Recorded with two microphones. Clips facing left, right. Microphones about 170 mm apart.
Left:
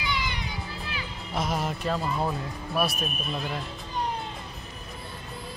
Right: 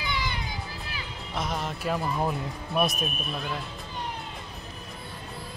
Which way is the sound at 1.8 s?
15° right (ahead or behind).